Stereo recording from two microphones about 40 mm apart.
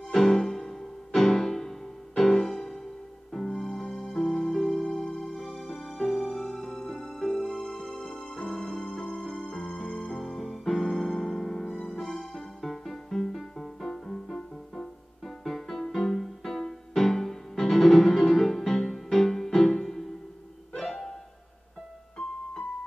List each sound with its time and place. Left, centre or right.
0.1 s music: centre
3.6 s music: centre
4.1 s music: centre
4.8 s music: left
5.6 s music: centre
8.5 s music: centre